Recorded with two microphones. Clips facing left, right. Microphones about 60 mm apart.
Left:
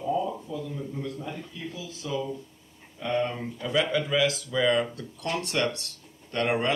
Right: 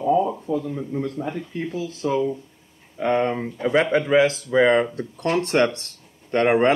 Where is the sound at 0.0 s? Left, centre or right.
Right.